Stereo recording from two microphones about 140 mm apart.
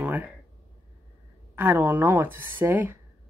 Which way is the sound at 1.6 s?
10° right (ahead or behind).